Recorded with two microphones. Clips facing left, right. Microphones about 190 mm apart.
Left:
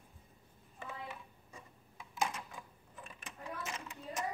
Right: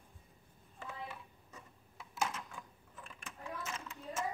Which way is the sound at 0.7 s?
10° left (ahead or behind).